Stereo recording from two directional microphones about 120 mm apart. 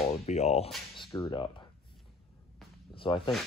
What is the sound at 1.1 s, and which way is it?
Speech, 25° left (ahead or behind).